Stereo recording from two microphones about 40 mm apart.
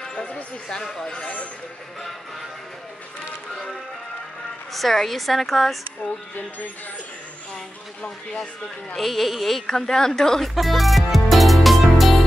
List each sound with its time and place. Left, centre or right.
1.2 s speech: left
4.7 s a woman's voice: centre
6.0 s speech: left
8.9 s a woman's voice: centre
9.7 s a woman's voice: centre
10.4 s music: centre